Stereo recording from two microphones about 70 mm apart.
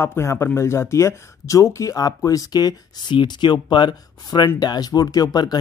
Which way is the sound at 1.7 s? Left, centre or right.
Left.